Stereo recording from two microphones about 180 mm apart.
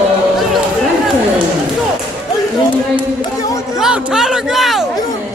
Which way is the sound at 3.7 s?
5° right (ahead or behind).